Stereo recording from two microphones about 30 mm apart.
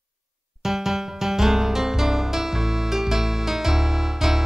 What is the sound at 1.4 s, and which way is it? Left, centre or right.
Music, centre.